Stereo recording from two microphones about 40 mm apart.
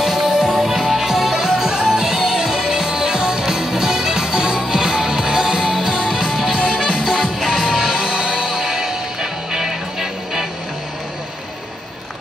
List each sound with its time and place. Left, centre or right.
0.0 s music: centre